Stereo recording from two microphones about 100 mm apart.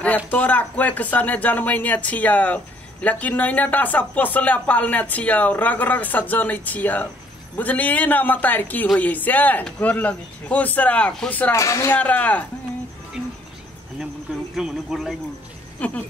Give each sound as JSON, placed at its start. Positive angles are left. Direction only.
{"t": 0.3, "sound": "speech", "side_deg": 15}
{"t": 11.5, "sound": "speech", "side_deg": 30}
{"t": 12.0, "sound": "speech", "side_deg": 15}
{"t": 14.5, "sound": "speech", "side_deg": -5}
{"t": 15.8, "sound": "speech", "side_deg": 15}